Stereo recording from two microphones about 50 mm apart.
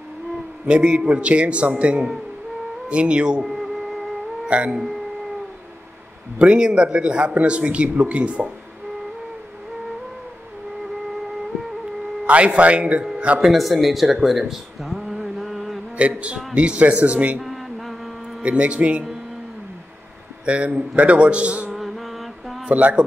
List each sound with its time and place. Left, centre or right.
0.7 s a man's voice: right
3.4 s music: centre
4.5 s speech: right
6.3 s a man's voice: right
12.3 s a man's voice: right
13.4 s a man's voice: centre
14.5 s a sound: centre
16.0 s a man's voice: right
17.4 s mantra: centre
18.4 s a man's voice: right
20.4 s a man's voice: right
21.7 s mantra: centre
22.7 s a man's voice: right